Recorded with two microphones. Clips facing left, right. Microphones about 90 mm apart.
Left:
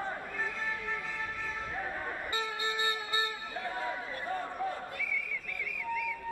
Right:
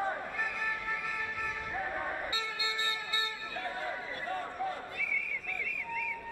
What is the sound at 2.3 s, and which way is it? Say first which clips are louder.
Vehicle: left 3 dB; 50° left (ahead or behind).